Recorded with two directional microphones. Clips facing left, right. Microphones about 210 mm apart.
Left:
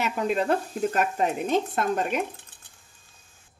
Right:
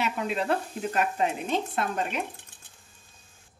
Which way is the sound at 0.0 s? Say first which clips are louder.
Left 3 dB; 45° left (ahead or behind).